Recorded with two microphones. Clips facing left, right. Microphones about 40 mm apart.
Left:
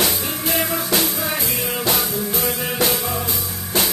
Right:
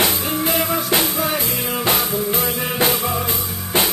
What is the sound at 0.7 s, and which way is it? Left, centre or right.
Music, right.